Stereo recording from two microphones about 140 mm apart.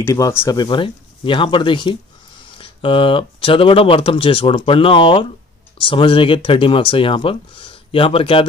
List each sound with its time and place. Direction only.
0.0 s speech: 20° left (ahead or behind)
0.6 s speech: 35° left (ahead or behind)